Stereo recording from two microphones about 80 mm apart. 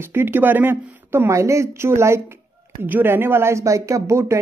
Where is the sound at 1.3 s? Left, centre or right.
Right.